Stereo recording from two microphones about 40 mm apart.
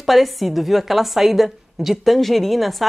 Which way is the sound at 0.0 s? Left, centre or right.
Centre.